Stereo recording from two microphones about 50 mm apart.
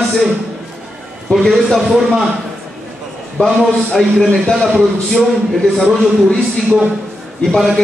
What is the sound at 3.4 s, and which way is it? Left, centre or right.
Speech, left.